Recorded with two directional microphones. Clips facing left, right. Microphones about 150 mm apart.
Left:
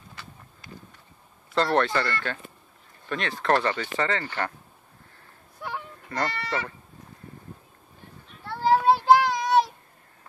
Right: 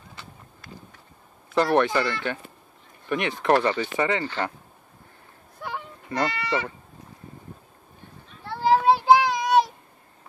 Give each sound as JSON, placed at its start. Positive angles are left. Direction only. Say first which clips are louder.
{"t": 1.5, "sound": "speech", "louder": "right 2 dB", "side_deg": -15}
{"t": 5.6, "sound": "a sound", "louder": "right 1 dB", "side_deg": 0}
{"t": 6.0, "sound": "speech", "louder": "right 3 dB", "side_deg": -15}
{"t": 8.5, "sound": "child singing", "louder": "right 1 dB", "side_deg": 0}
{"t": 8.9, "sound": "child singing", "louder": "right 1 dB", "side_deg": -20}